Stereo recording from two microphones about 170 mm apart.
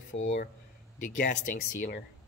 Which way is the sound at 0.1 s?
40° left (ahead or behind).